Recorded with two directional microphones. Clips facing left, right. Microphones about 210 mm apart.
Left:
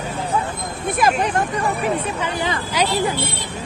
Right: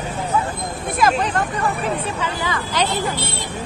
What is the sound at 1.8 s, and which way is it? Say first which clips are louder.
Speech: left 1 dB; 20° left (ahead or behind).